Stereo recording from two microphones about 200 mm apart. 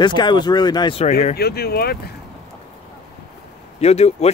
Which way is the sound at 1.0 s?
35° left (ahead or behind).